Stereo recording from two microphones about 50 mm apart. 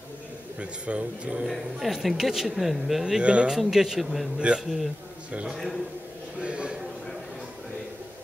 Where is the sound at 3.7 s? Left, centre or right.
Centre.